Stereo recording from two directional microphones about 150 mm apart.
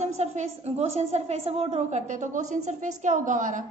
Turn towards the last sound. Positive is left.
turn(degrees=-55)  # may be behind; listen again after turning